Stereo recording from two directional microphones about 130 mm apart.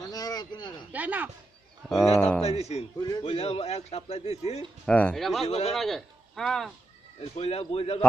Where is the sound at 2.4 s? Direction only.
55° left (ahead or behind).